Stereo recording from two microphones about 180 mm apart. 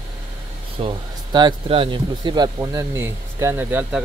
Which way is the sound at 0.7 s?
30° right (ahead or behind).